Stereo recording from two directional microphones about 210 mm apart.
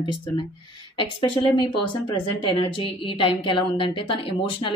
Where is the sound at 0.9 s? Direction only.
25° left (ahead or behind).